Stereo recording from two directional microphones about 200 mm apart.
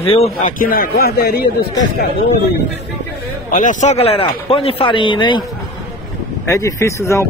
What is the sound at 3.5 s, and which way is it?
Speech, 40° left (ahead or behind).